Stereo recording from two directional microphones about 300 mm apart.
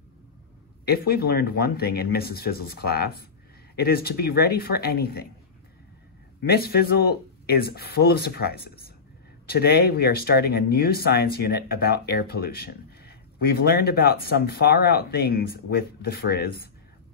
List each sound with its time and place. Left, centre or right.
0.8 s speech: left
6.5 s speech: left